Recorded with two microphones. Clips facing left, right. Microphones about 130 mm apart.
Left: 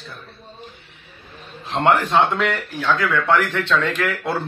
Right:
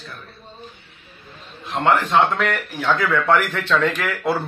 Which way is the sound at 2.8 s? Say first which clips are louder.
Right 1 dB; 15° right (ahead or behind).